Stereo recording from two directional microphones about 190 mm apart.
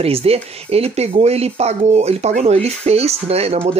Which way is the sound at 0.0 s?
30° right (ahead or behind).